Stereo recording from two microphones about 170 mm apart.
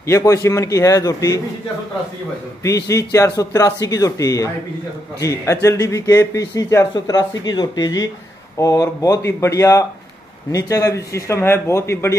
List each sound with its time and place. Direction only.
0.0 s speech: 15° left (ahead or behind)
2.6 s speech: 20° left (ahead or behind)